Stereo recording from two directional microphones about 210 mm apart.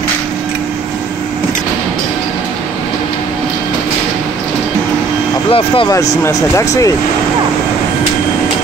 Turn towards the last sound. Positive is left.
turn(degrees=15)  # may be behind; listen again after turning